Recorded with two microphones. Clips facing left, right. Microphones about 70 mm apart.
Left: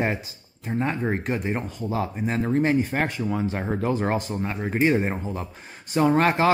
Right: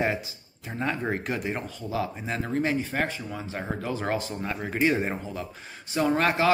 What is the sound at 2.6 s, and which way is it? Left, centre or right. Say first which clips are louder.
Speech: left 4 dB; left.